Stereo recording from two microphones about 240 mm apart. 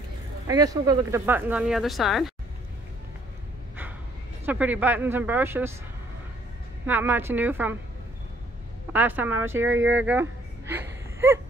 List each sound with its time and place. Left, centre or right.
0.5 s speech: centre
4.5 s speech: centre
6.9 s speech: centre
8.9 s speech: centre
9.6 s speech: right
9.9 s a sound: centre